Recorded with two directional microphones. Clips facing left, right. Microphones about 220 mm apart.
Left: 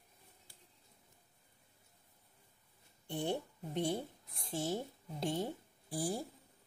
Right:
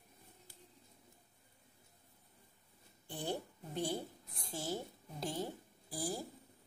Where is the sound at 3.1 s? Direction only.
25° left (ahead or behind).